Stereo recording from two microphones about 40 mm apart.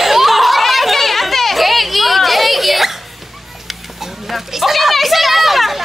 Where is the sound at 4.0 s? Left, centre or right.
Centre.